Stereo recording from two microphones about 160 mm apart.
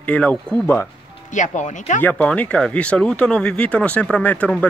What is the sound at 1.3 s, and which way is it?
Speech, 50° left (ahead or behind).